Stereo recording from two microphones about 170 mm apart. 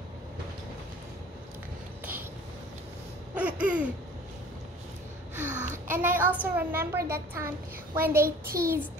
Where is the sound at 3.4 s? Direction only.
5° right (ahead or behind).